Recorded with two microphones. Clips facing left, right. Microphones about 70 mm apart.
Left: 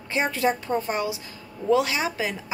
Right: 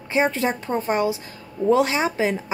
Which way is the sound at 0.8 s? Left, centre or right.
Right.